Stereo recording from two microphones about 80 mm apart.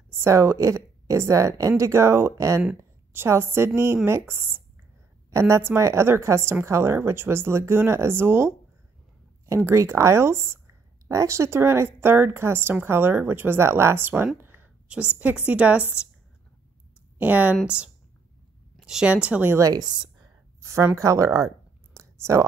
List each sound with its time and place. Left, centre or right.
0.1 s a woman's voice: right
3.1 s a woman's voice: right
14.9 s speech: centre
17.2 s speech: centre
18.8 s a sound: centre
19.0 s speech: centre
19.6 s a woman's voice: right
20.6 s a woman's voice: right
21.9 s a sound: right